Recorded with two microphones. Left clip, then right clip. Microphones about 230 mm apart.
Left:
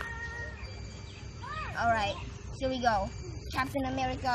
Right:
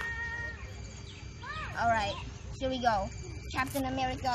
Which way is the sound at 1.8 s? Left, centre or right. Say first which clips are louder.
Even; centre.